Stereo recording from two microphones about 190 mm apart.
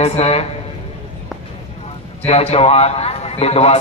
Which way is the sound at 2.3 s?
35° left (ahead or behind).